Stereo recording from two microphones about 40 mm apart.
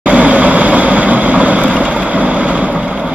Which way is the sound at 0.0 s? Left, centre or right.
Right.